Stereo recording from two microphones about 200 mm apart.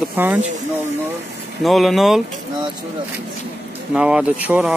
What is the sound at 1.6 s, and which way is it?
Speech, centre (ahead or behind).